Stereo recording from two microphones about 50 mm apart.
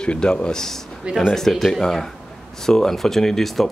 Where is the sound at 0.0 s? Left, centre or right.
Centre.